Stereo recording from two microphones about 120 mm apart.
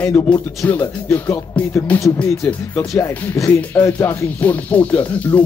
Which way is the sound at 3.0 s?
25° left (ahead or behind).